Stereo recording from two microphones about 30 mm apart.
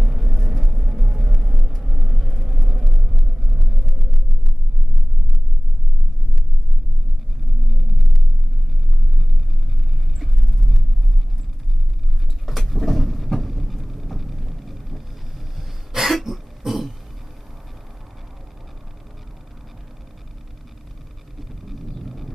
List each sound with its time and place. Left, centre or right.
0.0 s vehicle: centre
10.1 s vehicle: centre
12.4 s a sound: centre
12.8 s vehicle: centre
15.9 s throat clearing: centre
21.4 s vehicle: centre